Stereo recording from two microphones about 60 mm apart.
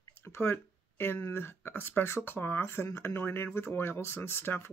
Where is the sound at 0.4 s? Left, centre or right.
Left.